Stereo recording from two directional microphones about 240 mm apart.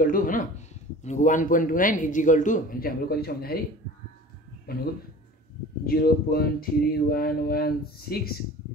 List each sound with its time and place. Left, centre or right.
0.0 s speech: left
4.7 s speech: left
5.9 s speech: left